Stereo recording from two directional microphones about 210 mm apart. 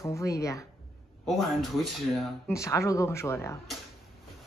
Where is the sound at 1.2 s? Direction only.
Centre (ahead or behind).